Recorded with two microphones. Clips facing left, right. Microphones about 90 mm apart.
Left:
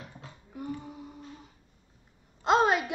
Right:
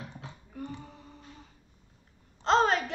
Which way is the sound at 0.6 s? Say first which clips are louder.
Left 4 dB; 10° left (ahead or behind).